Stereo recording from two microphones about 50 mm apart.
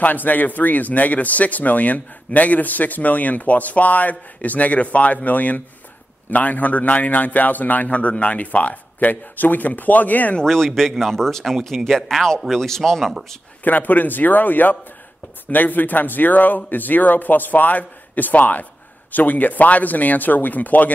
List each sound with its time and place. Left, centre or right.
0.0 s speech: left
10.4 s speech: centre
13.7 s speech: left